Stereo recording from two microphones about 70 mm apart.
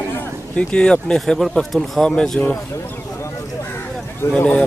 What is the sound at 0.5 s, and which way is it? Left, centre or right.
Speech, centre.